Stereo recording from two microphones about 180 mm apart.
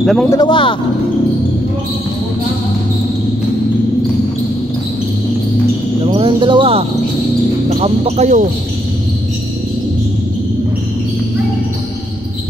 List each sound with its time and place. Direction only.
0.0 s speech: centre (ahead or behind)
0.3 s speech: 25° left (ahead or behind)
6.0 s speech: 30° right (ahead or behind)
7.8 s speech: 35° right (ahead or behind)